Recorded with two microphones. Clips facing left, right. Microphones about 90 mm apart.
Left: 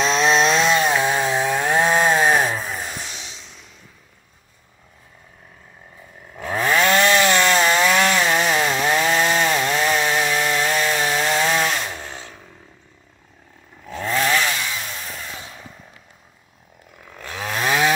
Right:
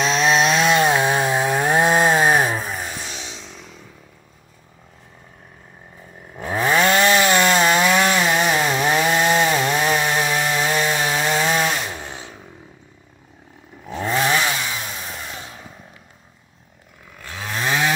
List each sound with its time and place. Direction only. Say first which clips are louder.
0.0 s chainsaw: even; 5° right (ahead or behind)
0.7 s chainsaw: right 2 dB; 20° right (ahead or behind)
6.3 s chainsaw: right 1 dB; 15° right (ahead or behind)
13.8 s chainsaw: right 1 dB; 20° right (ahead or behind)
17.0 s chainsaw: left 3 dB; 15° left (ahead or behind)